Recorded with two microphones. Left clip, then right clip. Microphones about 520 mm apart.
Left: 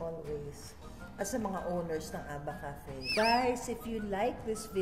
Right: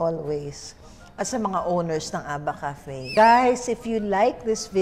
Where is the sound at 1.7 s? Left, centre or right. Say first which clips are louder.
Right 11 dB; right.